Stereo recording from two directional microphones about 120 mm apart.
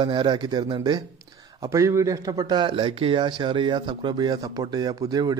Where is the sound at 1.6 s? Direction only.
25° right (ahead or behind).